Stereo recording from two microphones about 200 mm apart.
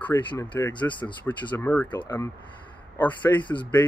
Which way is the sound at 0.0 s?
10° left (ahead or behind).